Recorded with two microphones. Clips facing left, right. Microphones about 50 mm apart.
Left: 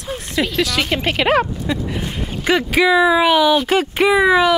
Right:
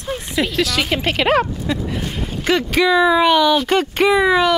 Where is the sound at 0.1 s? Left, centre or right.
Centre.